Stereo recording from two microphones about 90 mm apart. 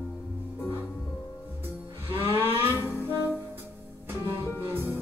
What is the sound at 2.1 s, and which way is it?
Vehicle, 25° right (ahead or behind).